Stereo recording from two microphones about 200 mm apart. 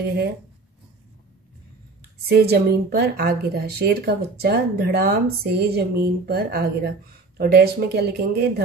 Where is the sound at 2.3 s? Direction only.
50° right (ahead or behind).